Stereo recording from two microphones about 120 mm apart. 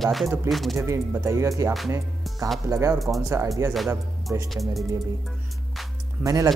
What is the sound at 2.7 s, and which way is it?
Speech, 25° right (ahead or behind).